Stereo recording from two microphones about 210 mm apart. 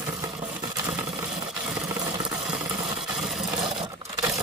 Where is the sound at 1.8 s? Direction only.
20° right (ahead or behind).